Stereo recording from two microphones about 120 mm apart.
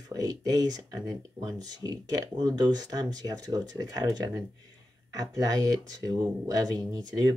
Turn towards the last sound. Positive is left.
turn(degrees=-35)  # may be behind; listen again after turning